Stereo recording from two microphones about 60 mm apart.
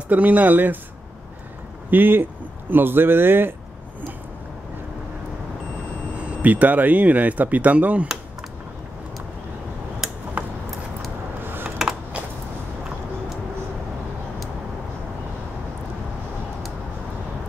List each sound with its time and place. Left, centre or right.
0.1 s speech: right
1.9 s speech: right
6.1 s speech: right
11.4 s typing: right